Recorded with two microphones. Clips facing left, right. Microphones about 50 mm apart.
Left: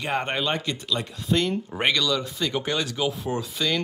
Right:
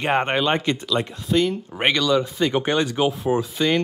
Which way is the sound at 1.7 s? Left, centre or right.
Centre.